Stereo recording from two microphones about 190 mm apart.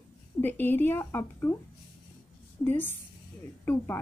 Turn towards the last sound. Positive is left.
turn(degrees=10)  # may be behind; listen again after turning